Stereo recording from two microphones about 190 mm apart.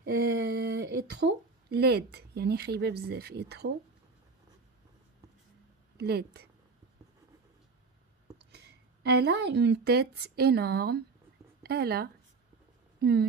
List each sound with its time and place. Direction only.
0.0 s speech: 55° right (ahead or behind)
5.9 s speech: 55° right (ahead or behind)
8.5 s speech: 60° right (ahead or behind)